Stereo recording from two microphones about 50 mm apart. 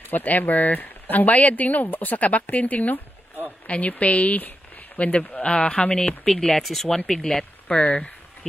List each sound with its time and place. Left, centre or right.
0.1 s speech: left; by 7.4 s centre
7.6 s speech: left